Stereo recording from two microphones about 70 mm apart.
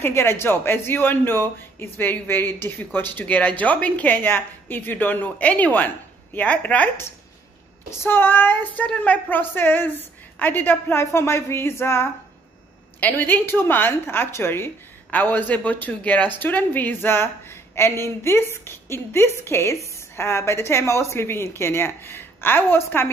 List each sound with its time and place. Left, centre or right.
0.0 s speech: left
8.0 s a woman's voice: left
15.0 s a woman's voice: left